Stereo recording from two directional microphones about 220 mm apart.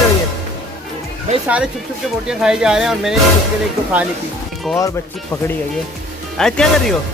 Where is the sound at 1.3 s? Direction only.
30° right (ahead or behind).